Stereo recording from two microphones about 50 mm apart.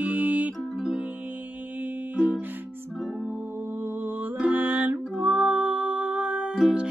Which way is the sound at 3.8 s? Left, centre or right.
Right.